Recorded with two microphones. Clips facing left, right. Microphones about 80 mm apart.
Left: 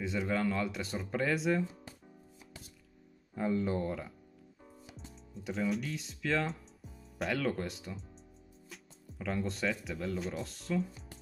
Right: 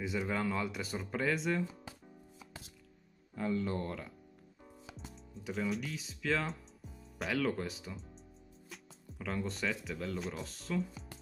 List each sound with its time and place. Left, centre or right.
0.0 s speech: centre
3.3 s speech: left
5.3 s speech: centre
9.2 s speech: centre